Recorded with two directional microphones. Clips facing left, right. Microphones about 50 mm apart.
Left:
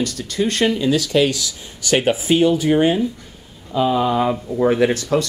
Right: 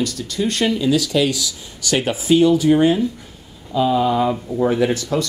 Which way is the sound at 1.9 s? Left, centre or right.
Left.